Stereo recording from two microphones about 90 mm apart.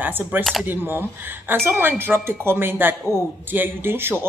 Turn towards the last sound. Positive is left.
turn(degrees=-25)  # may be behind; listen again after turning